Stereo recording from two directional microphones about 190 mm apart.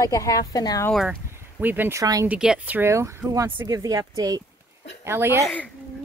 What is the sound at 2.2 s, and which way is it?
Speech, 5° right (ahead or behind).